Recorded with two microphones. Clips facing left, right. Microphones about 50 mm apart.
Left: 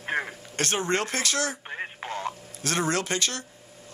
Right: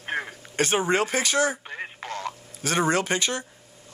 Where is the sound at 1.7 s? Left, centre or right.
Centre.